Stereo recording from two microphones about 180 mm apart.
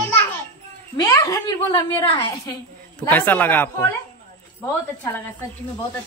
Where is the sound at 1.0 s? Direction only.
20° left (ahead or behind).